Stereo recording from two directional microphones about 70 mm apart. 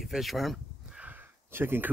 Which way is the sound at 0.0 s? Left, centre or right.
Centre.